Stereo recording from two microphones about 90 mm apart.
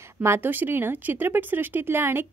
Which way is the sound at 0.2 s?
25° right (ahead or behind).